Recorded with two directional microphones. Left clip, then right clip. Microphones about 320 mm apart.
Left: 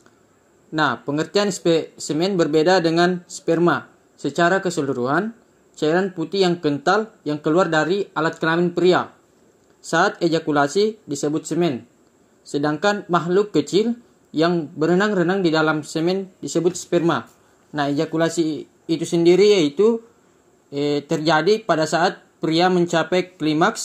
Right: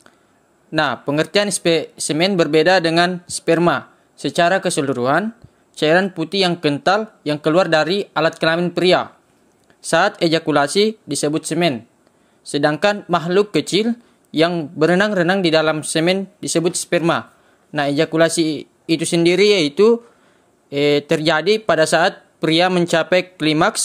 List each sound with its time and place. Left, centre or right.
0.7 s speech: right